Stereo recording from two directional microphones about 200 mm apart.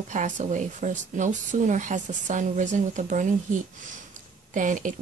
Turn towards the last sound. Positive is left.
turn(degrees=-40)  # may be behind; listen again after turning